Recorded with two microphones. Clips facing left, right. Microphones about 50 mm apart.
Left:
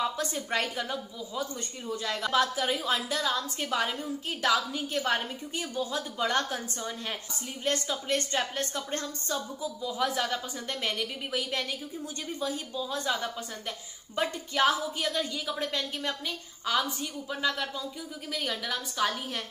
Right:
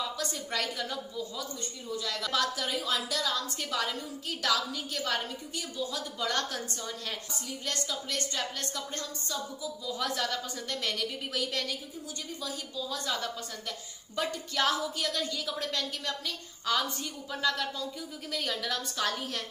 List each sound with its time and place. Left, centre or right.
0.2 s a woman's voice: left
9.8 s a woman's voice: centre
12.4 s a woman's voice: left
16.6 s a woman's voice: centre